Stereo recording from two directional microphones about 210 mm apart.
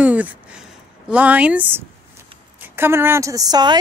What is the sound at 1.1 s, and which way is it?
A woman's voice, 5° right (ahead or behind).